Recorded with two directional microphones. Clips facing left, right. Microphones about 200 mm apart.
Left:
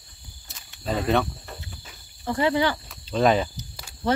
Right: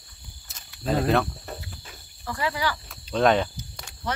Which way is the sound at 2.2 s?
25° left (ahead or behind).